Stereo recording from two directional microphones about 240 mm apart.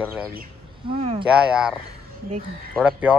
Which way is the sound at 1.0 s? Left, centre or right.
Right.